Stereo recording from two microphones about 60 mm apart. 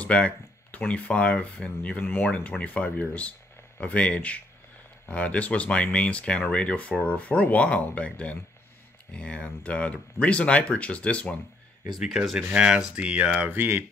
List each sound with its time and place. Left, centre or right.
0.0 s speech: left
12.0 s speech: centre
13.5 s speech: right